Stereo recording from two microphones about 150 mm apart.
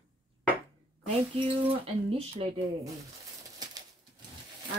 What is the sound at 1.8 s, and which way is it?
Speech, 40° right (ahead or behind).